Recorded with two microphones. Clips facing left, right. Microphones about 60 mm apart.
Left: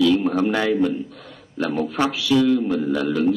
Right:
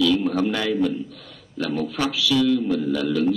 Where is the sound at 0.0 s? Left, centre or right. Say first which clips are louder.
Left 2 dB; left.